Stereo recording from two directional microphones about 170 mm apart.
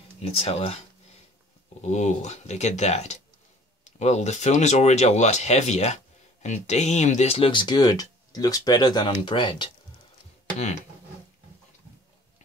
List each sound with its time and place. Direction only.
0.2 s speech: 35° left (ahead or behind)
1.8 s speech: 45° left (ahead or behind)